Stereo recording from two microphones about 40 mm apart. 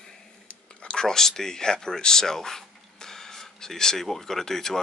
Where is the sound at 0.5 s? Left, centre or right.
Left.